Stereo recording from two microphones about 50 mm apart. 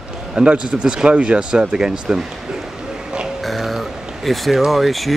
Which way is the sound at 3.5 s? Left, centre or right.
Centre.